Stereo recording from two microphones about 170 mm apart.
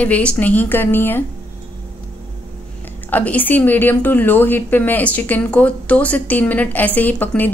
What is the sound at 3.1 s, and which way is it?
A woman's voice, 10° left (ahead or behind).